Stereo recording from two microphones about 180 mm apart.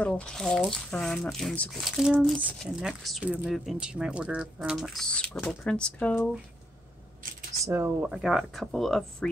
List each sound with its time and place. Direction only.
0.0 s speech: 5° left (ahead or behind)
7.6 s speech: 15° right (ahead or behind)